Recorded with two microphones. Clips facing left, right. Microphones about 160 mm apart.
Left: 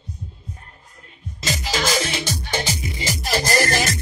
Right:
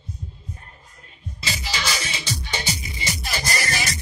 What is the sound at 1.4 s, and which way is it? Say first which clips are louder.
Music: left 6 dB; 45° left (ahead or behind).